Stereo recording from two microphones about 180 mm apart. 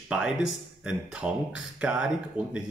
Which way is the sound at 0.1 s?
5° right (ahead or behind).